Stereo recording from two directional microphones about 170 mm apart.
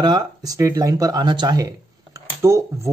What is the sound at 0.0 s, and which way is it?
Speech, 20° right (ahead or behind).